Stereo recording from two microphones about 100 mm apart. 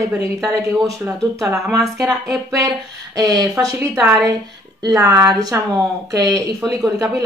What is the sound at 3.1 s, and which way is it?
A woman's voice, 35° right (ahead or behind).